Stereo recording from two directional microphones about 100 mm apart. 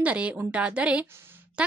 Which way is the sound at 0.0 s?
10° right (ahead or behind).